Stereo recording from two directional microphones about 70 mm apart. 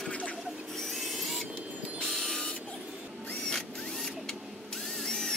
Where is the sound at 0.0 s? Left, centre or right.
Centre.